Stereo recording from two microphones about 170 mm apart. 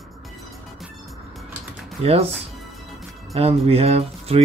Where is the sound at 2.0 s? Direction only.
35° right (ahead or behind).